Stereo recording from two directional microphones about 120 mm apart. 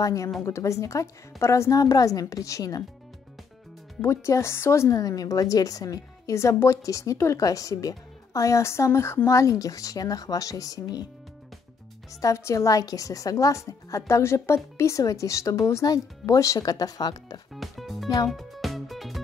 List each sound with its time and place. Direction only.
0.0 s a woman's voice: 25° left (ahead or behind)
4.0 s a woman's voice: 25° left (ahead or behind)
12.1 s a woman's voice: 25° left (ahead or behind)
17.6 s speech: centre (ahead or behind)
18.2 s music: centre (ahead or behind)